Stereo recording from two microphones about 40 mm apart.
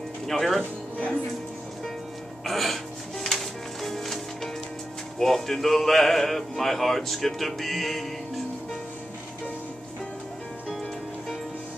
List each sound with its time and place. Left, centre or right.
0.3 s speech: centre
0.6 s speech: left
2.4 s music: centre
5.2 s speech: centre